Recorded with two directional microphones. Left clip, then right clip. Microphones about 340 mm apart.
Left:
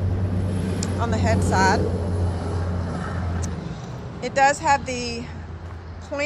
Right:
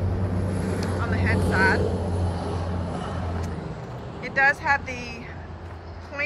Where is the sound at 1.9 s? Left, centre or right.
Right.